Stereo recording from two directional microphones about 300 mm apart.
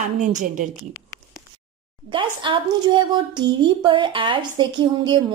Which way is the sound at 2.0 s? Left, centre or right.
Centre.